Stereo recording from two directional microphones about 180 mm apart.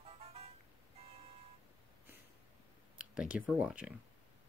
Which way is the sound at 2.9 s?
5° right (ahead or behind).